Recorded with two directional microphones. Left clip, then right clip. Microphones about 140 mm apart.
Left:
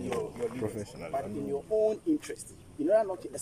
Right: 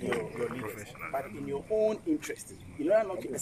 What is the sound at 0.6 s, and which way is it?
Speech, 60° left (ahead or behind).